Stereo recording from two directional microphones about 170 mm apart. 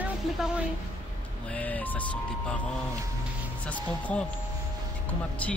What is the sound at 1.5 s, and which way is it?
Speech, 10° left (ahead or behind).